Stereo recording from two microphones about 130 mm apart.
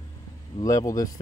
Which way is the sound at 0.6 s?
30° left (ahead or behind).